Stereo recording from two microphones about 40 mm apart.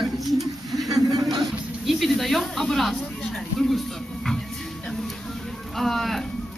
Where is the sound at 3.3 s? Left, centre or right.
Centre.